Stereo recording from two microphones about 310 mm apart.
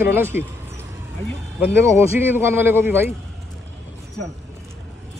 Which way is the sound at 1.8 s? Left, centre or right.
Centre.